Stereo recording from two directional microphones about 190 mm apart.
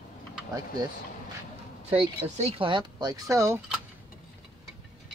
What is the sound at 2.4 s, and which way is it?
Speech, 30° right (ahead or behind).